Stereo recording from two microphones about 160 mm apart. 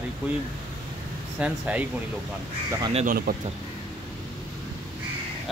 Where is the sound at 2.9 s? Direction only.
60° right (ahead or behind).